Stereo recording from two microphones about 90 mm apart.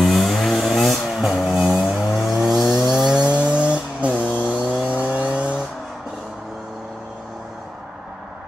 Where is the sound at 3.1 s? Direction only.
10° right (ahead or behind).